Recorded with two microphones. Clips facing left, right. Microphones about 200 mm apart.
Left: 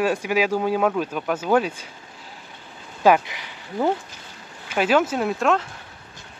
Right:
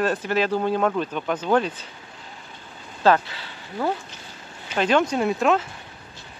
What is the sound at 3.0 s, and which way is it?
Speech, 15° left (ahead or behind).